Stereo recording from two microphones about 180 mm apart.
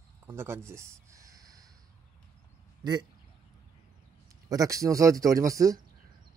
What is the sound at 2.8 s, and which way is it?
Speech, 25° right (ahead or behind).